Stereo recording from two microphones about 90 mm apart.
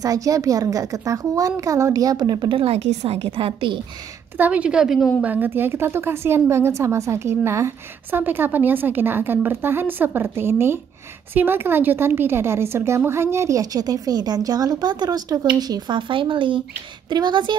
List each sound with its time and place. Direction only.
0.0 s a woman's voice: 40° right (ahead or behind)
3.2 s a woman's voice: 90° right
4.4 s speech: 15° right (ahead or behind)
5.2 s a woman's voice: 20° right (ahead or behind); by 16.0 s 45° right (ahead or behind)
16.0 s speech: 70° right (ahead or behind)
17.1 s speech: 55° right (ahead or behind)